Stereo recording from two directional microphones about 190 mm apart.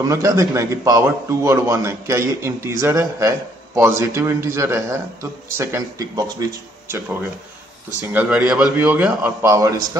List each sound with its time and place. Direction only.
0.0 s a man's voice: 15° right (ahead or behind)
8.1 s a man's voice: 5° right (ahead or behind)
9.4 s a man's voice: 15° right (ahead or behind)